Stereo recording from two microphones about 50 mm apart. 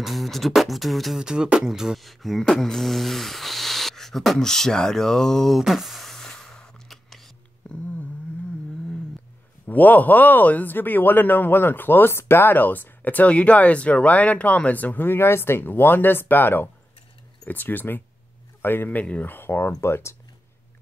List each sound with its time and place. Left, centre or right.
0.0 s beatboxing: centre
1.2 s beatboxing: centre
5.7 s a sound: centre
9.7 s a man's voice: left
15.0 s a man's voice: left
18.9 s a man's voice: left
19.3 s speech: left
19.8 s speech: left